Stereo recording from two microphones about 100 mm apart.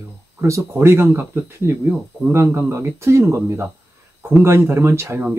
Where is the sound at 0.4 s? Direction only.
30° right (ahead or behind).